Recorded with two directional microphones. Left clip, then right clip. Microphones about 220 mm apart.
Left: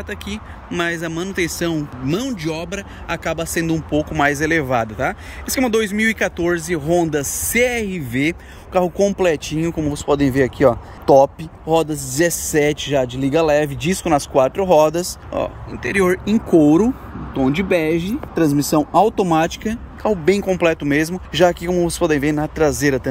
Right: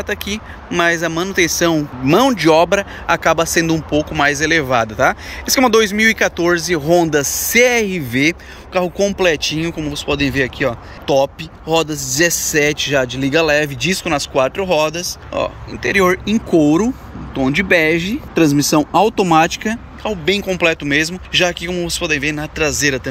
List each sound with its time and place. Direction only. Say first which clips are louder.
0.0 s speech: right 7 dB; 10° left (ahead or behind)
18.3 s speech: right 3 dB; 25° right (ahead or behind)
19.4 s speech: right 4 dB; 5° left (ahead or behind)
20.0 s speech: left 2 dB; 20° left (ahead or behind)